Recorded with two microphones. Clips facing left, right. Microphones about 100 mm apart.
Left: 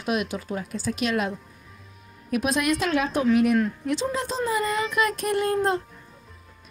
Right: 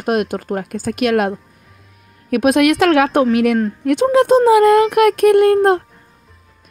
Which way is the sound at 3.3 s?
85° right.